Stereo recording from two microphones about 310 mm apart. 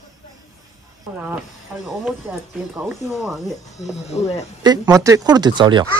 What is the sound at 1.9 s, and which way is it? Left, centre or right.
Speech, centre.